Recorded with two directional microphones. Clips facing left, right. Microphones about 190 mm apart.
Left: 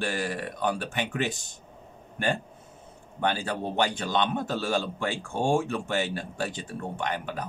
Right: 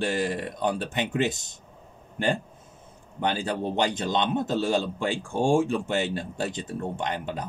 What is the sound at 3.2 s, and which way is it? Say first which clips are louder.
Speech: right 1 dB; 15° right (ahead or behind).